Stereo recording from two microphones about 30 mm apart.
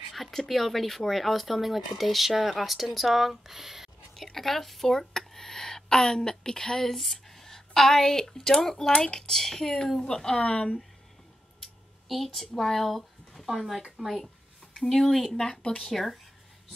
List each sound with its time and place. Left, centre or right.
0.1 s a sound: centre
0.5 s speech: centre
4.1 s speech: centre
6.8 s a woman's voice: centre
10.4 s speech: left
11.6 s a sound: centre
13.5 s speech: centre
14.8 s speech: centre